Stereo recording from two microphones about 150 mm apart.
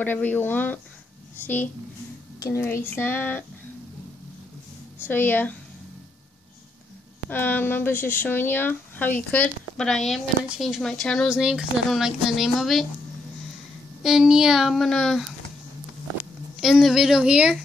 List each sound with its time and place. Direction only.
0.0 s speech: 10° left (ahead or behind)
5.0 s speech: 15° left (ahead or behind)
7.2 s speech: 15° left (ahead or behind)
14.0 s speech: 5° right (ahead or behind)
16.6 s speech: centre (ahead or behind)